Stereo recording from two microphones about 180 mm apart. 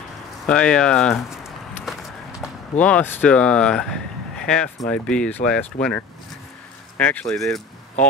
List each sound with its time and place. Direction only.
0.5 s speech: 5° left (ahead or behind)
2.8 s speech: 10° left (ahead or behind)